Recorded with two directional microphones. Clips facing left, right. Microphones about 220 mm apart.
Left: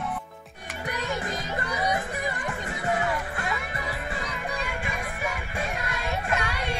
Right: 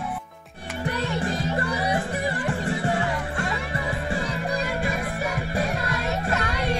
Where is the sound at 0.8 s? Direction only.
30° right (ahead or behind).